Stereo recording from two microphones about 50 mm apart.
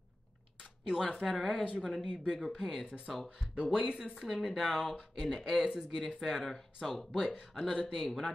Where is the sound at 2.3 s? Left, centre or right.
Centre.